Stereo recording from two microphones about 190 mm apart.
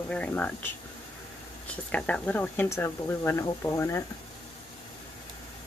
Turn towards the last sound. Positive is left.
turn(degrees=15)  # may be behind; listen again after turning